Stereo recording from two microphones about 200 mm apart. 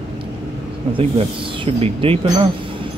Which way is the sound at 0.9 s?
30° right (ahead or behind).